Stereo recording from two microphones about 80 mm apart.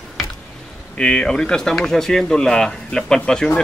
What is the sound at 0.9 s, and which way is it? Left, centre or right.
Speech, centre.